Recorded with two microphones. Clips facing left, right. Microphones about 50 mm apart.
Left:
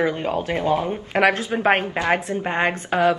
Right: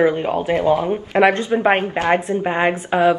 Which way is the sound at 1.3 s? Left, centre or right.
Centre.